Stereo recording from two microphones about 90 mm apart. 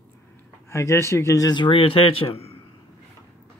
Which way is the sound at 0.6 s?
30° left (ahead or behind).